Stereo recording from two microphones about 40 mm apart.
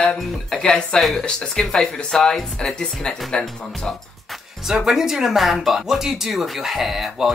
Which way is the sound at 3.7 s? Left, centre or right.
Centre.